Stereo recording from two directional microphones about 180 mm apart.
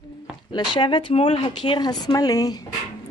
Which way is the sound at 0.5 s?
25° left (ahead or behind).